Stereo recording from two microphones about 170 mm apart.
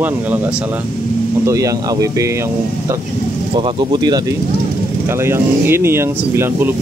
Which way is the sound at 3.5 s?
30° right (ahead or behind).